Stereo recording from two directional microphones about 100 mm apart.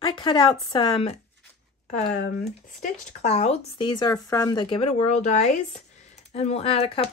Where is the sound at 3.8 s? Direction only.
50° left (ahead or behind).